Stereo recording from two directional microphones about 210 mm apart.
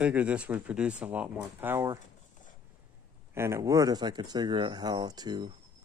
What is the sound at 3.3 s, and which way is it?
Speech, 15° right (ahead or behind).